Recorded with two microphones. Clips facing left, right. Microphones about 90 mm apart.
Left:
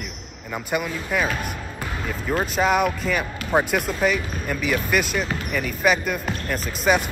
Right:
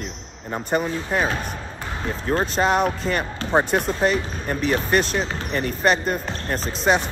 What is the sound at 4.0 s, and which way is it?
Speech, 35° right (ahead or behind).